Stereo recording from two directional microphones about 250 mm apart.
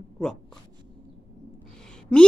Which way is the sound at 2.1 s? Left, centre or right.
Centre.